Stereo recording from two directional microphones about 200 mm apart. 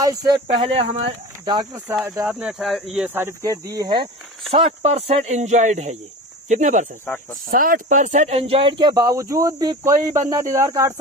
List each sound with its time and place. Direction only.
0.0 s speech: 15° right (ahead or behind)
2.2 s speech: 5° right (ahead or behind)
4.5 s speech: 30° right (ahead or behind); by 11.0 s 15° right (ahead or behind)